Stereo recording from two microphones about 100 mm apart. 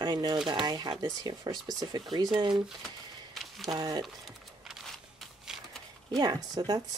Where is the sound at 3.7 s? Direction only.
40° right (ahead or behind).